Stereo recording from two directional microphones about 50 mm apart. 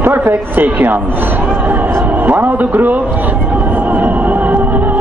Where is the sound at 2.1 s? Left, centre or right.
Right.